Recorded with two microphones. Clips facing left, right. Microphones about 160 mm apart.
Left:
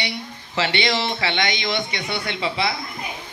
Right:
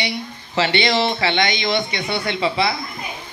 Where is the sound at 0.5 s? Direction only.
35° right (ahead or behind).